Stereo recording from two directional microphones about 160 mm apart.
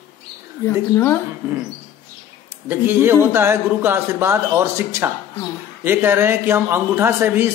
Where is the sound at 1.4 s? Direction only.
15° right (ahead or behind).